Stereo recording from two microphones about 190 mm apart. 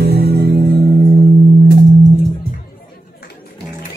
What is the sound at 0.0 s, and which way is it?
Music, 60° right (ahead or behind).